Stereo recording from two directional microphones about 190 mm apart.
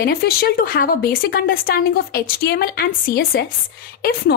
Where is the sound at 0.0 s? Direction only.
55° left (ahead or behind).